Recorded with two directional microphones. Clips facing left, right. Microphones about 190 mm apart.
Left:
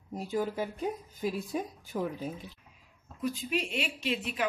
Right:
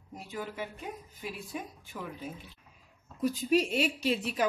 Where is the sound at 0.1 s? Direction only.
35° left (ahead or behind).